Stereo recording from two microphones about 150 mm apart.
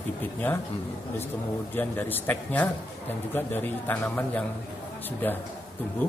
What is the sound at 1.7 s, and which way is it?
Speech, 15° left (ahead or behind).